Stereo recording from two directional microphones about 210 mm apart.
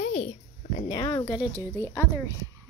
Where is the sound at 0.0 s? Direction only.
35° left (ahead or behind).